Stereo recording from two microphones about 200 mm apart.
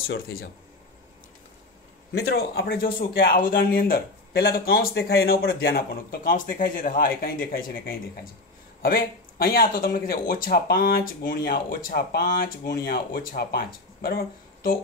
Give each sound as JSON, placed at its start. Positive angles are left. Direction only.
{"t": 2.1, "sound": "speech", "side_deg": 55}